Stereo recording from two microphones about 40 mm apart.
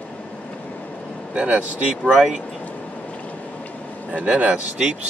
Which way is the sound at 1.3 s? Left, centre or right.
Right.